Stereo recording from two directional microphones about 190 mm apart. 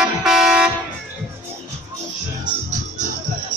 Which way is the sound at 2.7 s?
40° right (ahead or behind).